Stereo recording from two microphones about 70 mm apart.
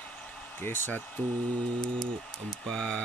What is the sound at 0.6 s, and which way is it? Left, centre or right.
Speech, left.